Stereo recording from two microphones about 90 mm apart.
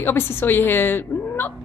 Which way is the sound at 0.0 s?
25° left (ahead or behind).